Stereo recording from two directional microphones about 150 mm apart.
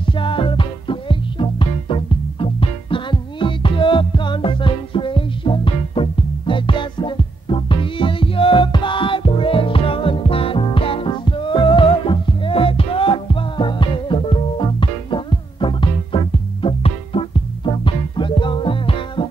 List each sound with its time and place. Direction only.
0.0 s music: 35° left (ahead or behind)